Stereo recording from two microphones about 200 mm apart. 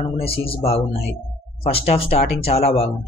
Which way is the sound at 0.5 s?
30° left (ahead or behind).